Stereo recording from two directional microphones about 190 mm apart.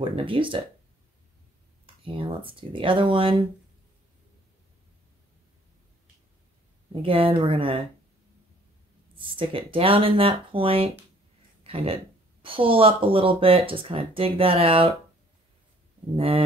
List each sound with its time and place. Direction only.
0.0 s speech: 25° right (ahead or behind)
2.0 s speech: 25° right (ahead or behind)
6.9 s speech: 30° right (ahead or behind)
9.1 s speech: 25° right (ahead or behind)
16.2 s speech: 30° right (ahead or behind)